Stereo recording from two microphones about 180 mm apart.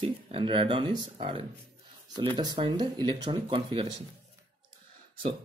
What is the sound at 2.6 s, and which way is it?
Speech, 25° right (ahead or behind).